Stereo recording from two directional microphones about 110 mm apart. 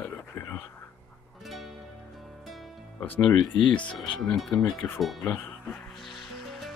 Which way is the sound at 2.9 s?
15° left (ahead or behind).